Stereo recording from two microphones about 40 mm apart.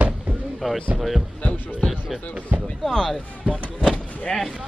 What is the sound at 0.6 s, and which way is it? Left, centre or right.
Speech, centre.